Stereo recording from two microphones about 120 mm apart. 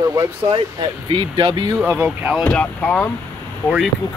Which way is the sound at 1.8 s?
10° right (ahead or behind).